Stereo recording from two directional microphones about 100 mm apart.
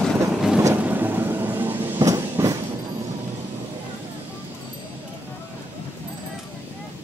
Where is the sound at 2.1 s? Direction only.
30° right (ahead or behind).